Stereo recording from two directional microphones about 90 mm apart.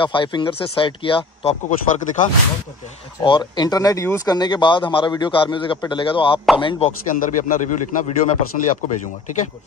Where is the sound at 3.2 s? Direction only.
65° left (ahead or behind).